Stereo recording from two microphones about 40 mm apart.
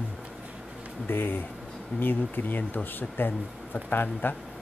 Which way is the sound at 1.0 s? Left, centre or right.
Left.